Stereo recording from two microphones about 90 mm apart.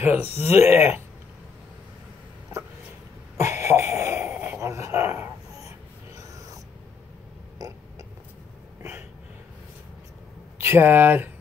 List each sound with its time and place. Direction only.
0.0 s speech: 25° right (ahead or behind)
3.3 s a sound: 35° right (ahead or behind)
4.6 s dog: 30° right (ahead or behind)
6.1 s dog: 40° right (ahead or behind)
10.6 s speech: 25° right (ahead or behind)